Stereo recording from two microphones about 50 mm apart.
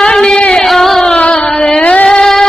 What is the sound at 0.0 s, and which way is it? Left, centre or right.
Music, centre.